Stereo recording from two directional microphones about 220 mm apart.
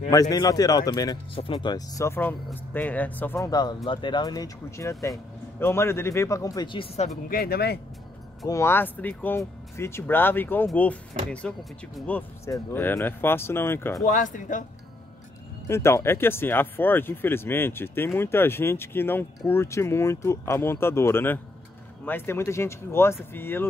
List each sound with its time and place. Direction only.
0.1 s speech: 15° left (ahead or behind)
7.2 s speech: 45° left (ahead or behind)
8.5 s speech: 10° left (ahead or behind)
14.0 s speech: 35° left (ahead or behind)
15.6 s speech: 10° left (ahead or behind)